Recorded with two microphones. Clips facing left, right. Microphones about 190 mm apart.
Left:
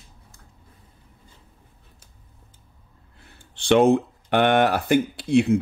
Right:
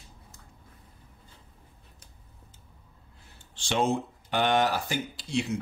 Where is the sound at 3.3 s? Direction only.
60° left (ahead or behind).